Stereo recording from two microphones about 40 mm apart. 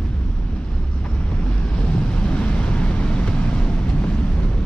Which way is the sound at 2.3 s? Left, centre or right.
Left.